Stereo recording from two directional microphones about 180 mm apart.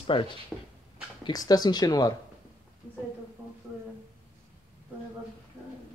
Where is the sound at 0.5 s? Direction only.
Centre (ahead or behind).